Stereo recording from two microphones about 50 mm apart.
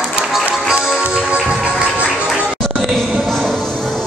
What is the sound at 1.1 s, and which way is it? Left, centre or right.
Music, centre.